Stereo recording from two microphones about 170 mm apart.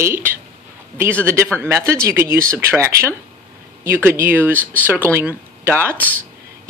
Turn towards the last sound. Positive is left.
turn(degrees=-15)  # may be behind; listen again after turning